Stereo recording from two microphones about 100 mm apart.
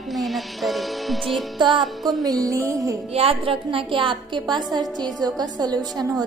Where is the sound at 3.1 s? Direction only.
75° right (ahead or behind).